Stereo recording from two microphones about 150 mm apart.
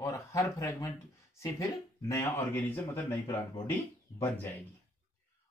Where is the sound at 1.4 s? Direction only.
20° left (ahead or behind).